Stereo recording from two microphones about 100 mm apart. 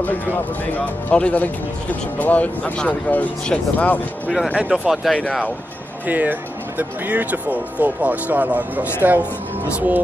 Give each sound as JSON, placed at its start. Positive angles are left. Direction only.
{"t": 0.7, "sound": "speech", "side_deg": 15}
{"t": 4.6, "sound": "speech", "side_deg": -5}
{"t": 5.1, "sound": "speech", "side_deg": 10}
{"t": 6.0, "sound": "speech", "side_deg": -15}